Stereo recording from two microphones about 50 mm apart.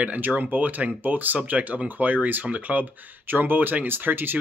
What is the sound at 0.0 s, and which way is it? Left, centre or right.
Speech, right.